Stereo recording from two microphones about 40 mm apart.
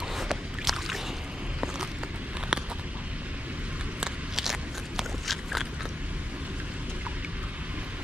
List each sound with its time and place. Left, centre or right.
0.1 s boat: centre
2.5 s a sound: right
4.4 s walk: centre
5.2 s clip-clop: centre